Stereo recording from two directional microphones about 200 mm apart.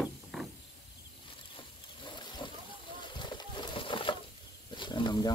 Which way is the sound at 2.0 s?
25° left (ahead or behind).